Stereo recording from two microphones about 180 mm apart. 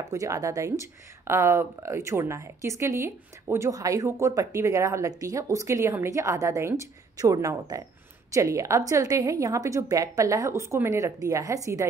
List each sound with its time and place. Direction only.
0.0 s speech: 15° right (ahead or behind)